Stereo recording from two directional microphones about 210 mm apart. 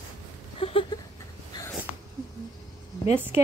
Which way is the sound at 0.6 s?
25° left (ahead or behind).